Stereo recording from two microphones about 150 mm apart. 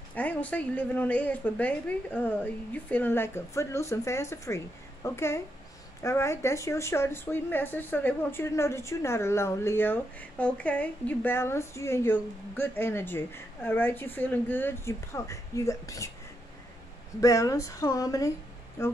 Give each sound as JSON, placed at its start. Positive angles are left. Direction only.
{"t": 0.1, "sound": "speech", "side_deg": 10}
{"t": 17.2, "sound": "speech", "side_deg": 20}